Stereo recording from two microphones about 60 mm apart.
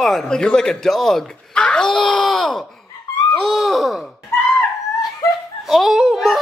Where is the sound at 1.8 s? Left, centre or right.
Centre.